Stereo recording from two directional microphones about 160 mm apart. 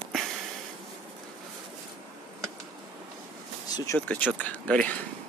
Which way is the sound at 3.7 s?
20° left (ahead or behind).